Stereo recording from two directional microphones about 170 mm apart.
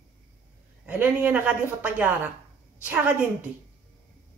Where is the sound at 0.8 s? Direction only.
10° right (ahead or behind).